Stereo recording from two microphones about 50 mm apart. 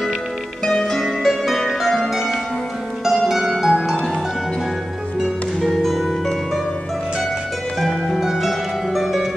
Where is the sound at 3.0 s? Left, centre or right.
Centre.